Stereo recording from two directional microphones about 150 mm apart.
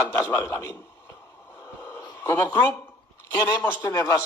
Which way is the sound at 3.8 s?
20° left (ahead or behind).